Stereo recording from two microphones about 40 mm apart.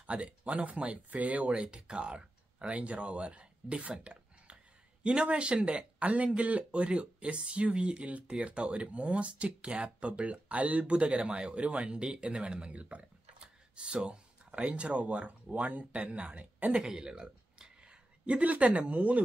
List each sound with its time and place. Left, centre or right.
0.0 s speech: right
1.5 s speech: right
16.7 s speech: centre; by 19.2 s right